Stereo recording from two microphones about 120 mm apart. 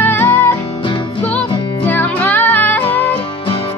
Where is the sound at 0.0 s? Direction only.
15° left (ahead or behind).